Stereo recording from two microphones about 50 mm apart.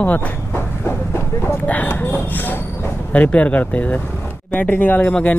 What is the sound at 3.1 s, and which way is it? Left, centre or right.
Speech, left.